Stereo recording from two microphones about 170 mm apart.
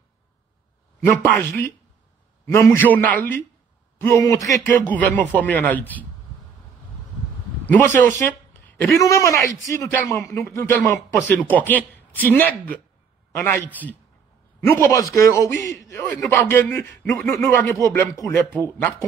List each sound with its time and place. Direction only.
1.0 s a man's voice: 10° left (ahead or behind)
7.6 s a man's voice: 10° left (ahead or behind)
14.7 s a man's voice: 20° left (ahead or behind)